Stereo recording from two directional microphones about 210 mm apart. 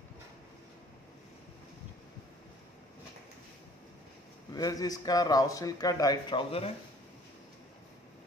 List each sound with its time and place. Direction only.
4.6 s speech: 15° left (ahead or behind)